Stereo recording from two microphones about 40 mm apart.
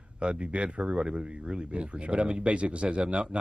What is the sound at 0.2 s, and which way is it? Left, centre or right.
A man's voice, right.